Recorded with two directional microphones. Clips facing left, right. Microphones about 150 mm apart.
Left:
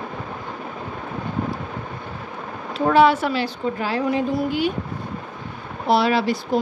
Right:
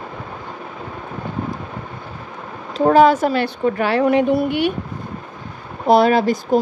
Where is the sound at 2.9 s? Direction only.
45° right (ahead or behind).